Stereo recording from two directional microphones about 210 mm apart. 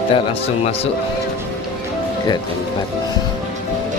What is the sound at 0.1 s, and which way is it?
Speech, 25° left (ahead or behind).